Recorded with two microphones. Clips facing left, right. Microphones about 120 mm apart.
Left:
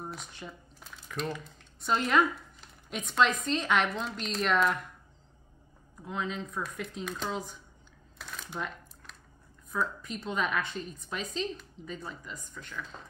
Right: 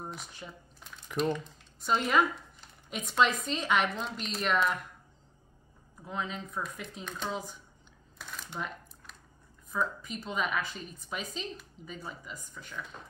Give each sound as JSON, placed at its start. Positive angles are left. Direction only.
{"t": 0.0, "sound": "squish", "side_deg": 0}
{"t": 1.3, "sound": "a woman's voice", "side_deg": 0}
{"t": 6.0, "sound": "a woman's voice", "side_deg": 0}
{"t": 8.2, "sound": "a sound", "side_deg": 0}
{"t": 9.7, "sound": "a woman's voice", "side_deg": 0}